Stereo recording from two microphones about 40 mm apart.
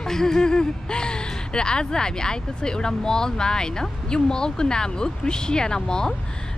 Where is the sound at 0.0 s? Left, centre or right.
Centre.